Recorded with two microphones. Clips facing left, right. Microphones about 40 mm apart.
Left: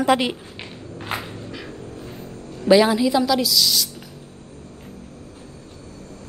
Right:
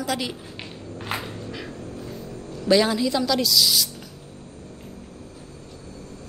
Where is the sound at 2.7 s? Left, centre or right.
Centre.